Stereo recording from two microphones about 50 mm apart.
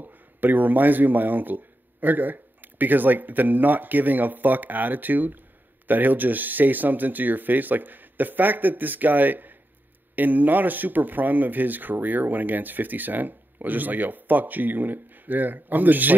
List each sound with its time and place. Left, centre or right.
0.0 s speech: right